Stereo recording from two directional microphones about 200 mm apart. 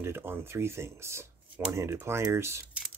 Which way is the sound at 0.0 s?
10° right (ahead or behind).